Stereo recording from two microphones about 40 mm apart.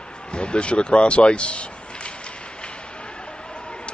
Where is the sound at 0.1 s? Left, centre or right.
Left.